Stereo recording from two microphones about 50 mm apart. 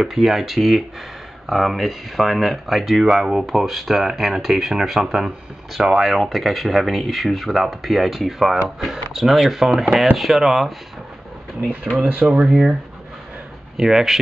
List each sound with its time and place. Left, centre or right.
0.0 s speech: centre
12.2 s speech: right
13.7 s speech: centre